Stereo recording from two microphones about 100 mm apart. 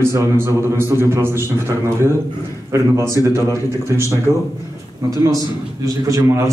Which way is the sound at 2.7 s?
30° right (ahead or behind).